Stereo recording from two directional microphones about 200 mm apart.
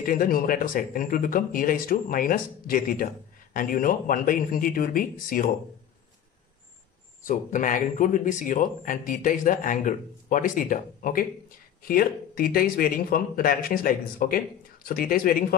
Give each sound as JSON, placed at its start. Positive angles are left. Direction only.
{"t": 0.0, "sound": "speech", "side_deg": 45}
{"t": 7.2, "sound": "speech", "side_deg": 40}